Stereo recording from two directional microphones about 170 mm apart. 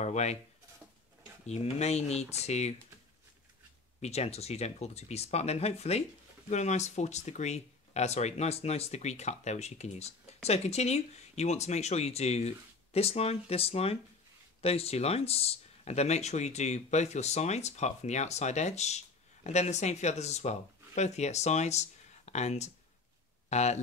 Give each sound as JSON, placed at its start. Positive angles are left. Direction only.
{"t": 0.0, "sound": "speech", "side_deg": 40}
{"t": 1.5, "sound": "speech", "side_deg": 40}
{"t": 4.0, "sound": "speech", "side_deg": 40}